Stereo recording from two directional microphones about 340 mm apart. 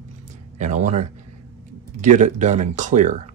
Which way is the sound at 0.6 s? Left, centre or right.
Right.